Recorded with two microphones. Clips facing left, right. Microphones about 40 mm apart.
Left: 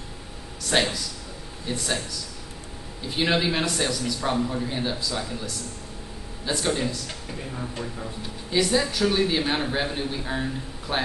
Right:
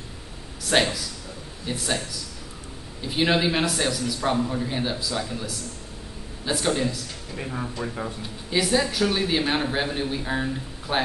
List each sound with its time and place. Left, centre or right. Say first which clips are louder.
0.7 s a man's voice: right 2 dB; centre
7.3 s speech: right 4 dB; right
8.5 s a man's voice: even; centre